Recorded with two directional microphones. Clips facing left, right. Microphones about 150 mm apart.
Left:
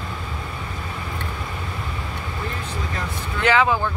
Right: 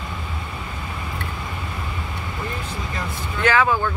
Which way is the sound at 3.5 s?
20° left (ahead or behind).